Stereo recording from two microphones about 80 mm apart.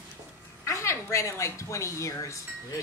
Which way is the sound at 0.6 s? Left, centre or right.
Left.